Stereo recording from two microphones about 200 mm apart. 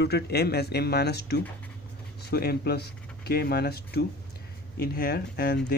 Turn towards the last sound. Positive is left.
turn(degrees=50)  # may be behind; listen again after turning